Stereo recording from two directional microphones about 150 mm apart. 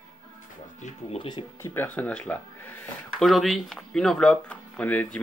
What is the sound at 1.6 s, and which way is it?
Speech, 15° left (ahead or behind).